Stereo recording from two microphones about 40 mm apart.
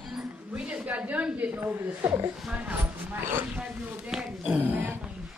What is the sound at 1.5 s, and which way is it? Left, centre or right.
Speech, right.